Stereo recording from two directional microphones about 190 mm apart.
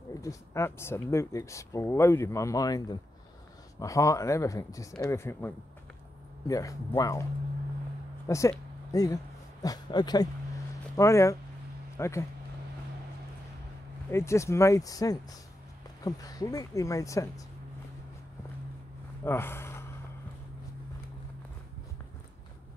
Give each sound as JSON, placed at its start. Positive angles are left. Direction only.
{"t": 0.2, "sound": "speech", "side_deg": 15}
{"t": 8.3, "sound": "speech", "side_deg": 15}
{"t": 14.1, "sound": "speech", "side_deg": 15}
{"t": 19.2, "sound": "speech", "side_deg": 10}